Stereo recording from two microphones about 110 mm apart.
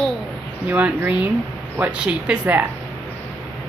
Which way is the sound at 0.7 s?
15° right (ahead or behind).